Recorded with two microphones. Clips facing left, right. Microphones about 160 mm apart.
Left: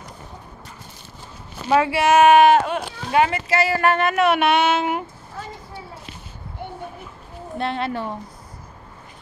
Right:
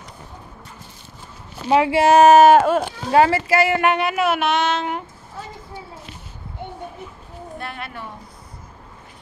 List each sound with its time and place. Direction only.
1.7 s speech: 20° right (ahead or behind)
3.6 s speech: 20° right (ahead or behind)
4.1 s speech: 5° right (ahead or behind)
7.5 s a woman's voice: 25° left (ahead or behind)